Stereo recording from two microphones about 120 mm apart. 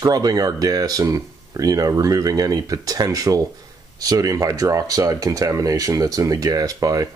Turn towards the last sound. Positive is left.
turn(degrees=-30)  # may be behind; listen again after turning